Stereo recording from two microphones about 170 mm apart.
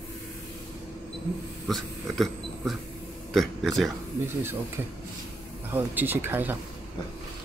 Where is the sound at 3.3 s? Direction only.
Centre (ahead or behind).